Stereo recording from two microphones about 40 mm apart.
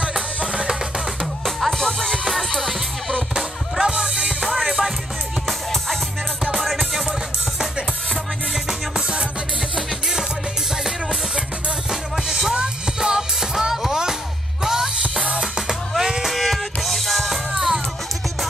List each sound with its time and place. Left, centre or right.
0.4 s music: right
1.2 s music: centre
3.9 s music: right
4.5 s music: centre
10.8 s music: centre
16.3 s music: centre
17.6 s music: centre